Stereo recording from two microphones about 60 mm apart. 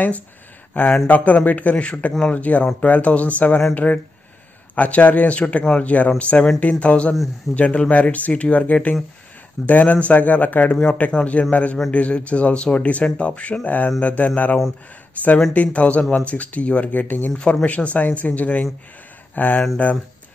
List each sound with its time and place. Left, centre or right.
1.0 s a man's voice: left
17.3 s speech: centre
17.6 s a man's voice: left